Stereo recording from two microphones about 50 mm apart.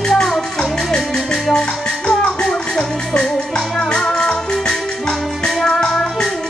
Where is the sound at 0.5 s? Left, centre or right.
Centre.